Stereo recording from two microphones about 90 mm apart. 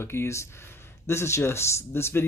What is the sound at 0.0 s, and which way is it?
Speech, 30° left (ahead or behind).